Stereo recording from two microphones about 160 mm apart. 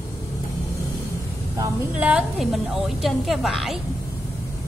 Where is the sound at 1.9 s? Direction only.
5° right (ahead or behind).